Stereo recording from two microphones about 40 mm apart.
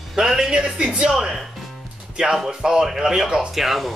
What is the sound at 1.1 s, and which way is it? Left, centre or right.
Speech, centre.